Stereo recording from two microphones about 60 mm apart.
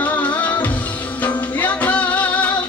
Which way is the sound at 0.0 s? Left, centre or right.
Left.